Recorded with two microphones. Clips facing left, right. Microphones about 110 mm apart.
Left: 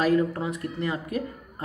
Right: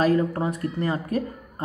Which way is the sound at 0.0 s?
35° right (ahead or behind).